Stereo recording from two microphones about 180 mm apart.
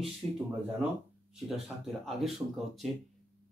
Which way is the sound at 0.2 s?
30° right (ahead or behind).